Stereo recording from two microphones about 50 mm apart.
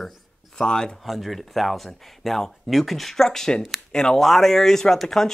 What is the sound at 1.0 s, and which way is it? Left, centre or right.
Speech, centre.